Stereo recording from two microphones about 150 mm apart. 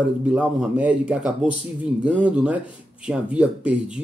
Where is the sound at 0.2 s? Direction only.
10° right (ahead or behind).